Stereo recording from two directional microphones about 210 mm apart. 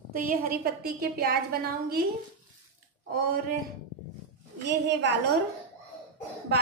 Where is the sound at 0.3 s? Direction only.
45° right (ahead or behind).